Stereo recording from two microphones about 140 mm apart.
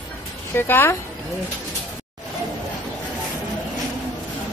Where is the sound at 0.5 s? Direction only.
15° left (ahead or behind).